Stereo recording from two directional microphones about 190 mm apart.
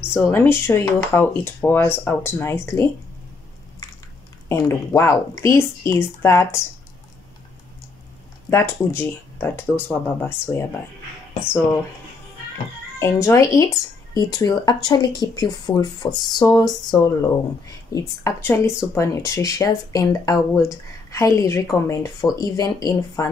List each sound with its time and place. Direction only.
0.2 s speech: 10° left (ahead or behind)
4.5 s speech: 15° left (ahead or behind)
8.5 s speech: 10° left (ahead or behind)
11.3 s speech: 5° right (ahead or behind)
13.0 s speech: 15° left (ahead or behind)